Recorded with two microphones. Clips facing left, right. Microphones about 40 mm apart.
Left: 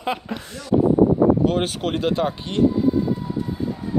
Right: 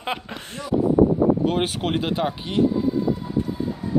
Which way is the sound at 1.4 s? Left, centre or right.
Centre.